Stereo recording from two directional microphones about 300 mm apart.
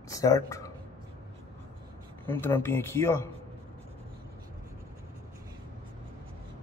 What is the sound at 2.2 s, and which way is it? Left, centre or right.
Speech, centre.